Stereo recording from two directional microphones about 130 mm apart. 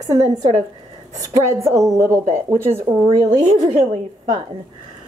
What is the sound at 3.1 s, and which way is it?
Speech, 35° right (ahead or behind).